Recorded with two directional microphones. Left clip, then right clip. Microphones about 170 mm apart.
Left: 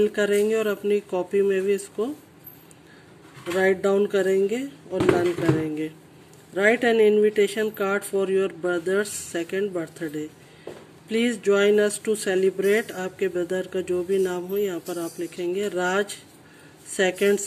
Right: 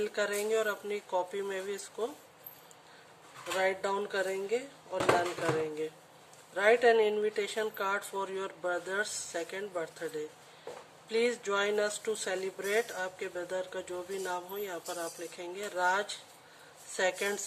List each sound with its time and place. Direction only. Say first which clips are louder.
0.1 s speech: left 10 dB; 15° left (ahead or behind)
3.5 s speech: left 10 dB; 15° left (ahead or behind)
6.5 s speech: left 5 dB; 15° left (ahead or behind)